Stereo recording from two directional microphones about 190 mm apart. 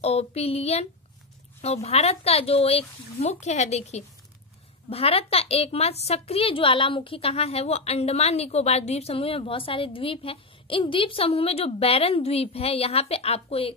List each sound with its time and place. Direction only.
0.0 s a woman's voice: 35° left (ahead or behind)